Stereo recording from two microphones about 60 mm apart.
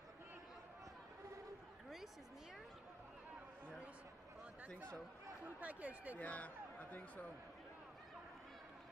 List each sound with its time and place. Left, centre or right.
5.6 s speech: right
6.1 s speech: left